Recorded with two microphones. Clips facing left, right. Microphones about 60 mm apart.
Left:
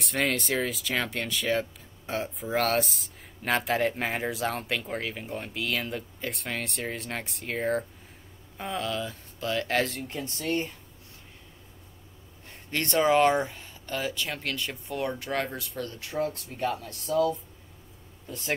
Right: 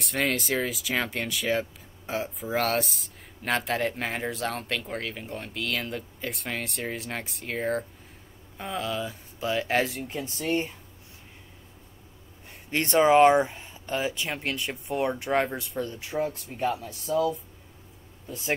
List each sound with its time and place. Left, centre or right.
0.0 s speech: centre
12.7 s speech: centre